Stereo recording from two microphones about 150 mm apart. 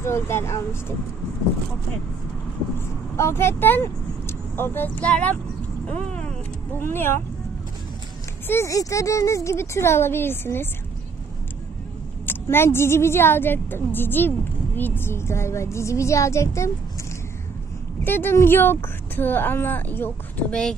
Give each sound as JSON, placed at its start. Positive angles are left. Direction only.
{"t": 0.0, "sound": "speech", "side_deg": 15}
{"t": 3.2, "sound": "speech", "side_deg": 15}
{"t": 6.8, "sound": "speech", "side_deg": 15}
{"t": 8.5, "sound": "speech", "side_deg": 20}
{"t": 12.3, "sound": "speech", "side_deg": 15}
{"t": 18.0, "sound": "speech", "side_deg": 15}